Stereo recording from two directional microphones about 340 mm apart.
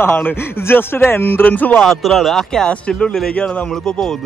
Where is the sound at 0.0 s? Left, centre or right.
Centre.